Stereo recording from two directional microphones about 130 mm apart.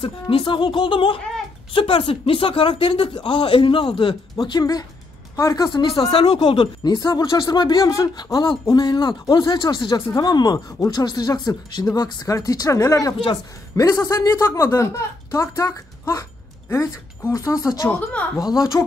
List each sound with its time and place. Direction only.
0.0 s a woman's voice: 45° left (ahead or behind); by 5.7 s 25° left (ahead or behind)
5.7 s speech: 40° left (ahead or behind)
6.1 s speech: 45° left (ahead or behind); by 18.9 s 25° left (ahead or behind)